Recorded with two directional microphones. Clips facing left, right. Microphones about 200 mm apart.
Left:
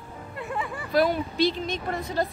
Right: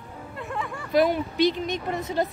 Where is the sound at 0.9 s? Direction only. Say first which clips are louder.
Right 2 dB; 15° right (ahead or behind).